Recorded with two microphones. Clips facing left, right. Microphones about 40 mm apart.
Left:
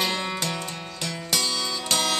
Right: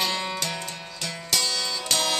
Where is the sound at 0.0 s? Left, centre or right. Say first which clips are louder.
Left 1 dB; centre.